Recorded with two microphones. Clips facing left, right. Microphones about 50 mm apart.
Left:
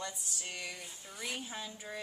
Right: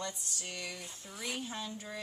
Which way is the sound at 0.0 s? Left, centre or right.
Centre.